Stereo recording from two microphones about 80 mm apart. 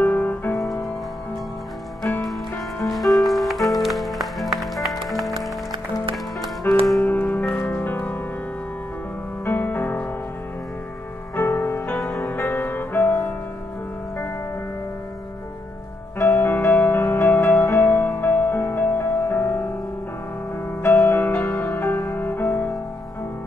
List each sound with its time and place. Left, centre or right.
0.0 s music: left
2.8 s music: centre
6.7 s music: left
9.4 s music: left
11.3 s music: left
16.2 s music: left
20.8 s music: left